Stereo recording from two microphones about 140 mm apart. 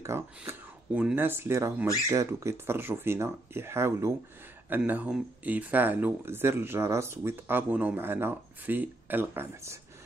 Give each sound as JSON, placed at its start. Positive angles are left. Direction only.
{"t": 0.0, "sound": "speech", "side_deg": -20}